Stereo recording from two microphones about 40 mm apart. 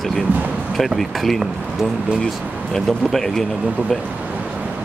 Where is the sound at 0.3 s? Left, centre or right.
Right.